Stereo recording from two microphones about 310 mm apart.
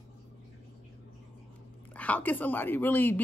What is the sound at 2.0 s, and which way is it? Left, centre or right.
A woman's voice, centre.